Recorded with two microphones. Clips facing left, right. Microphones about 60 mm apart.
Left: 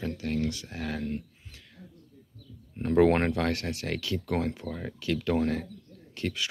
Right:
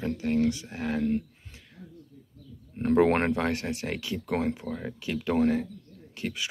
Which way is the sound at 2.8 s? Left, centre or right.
Right.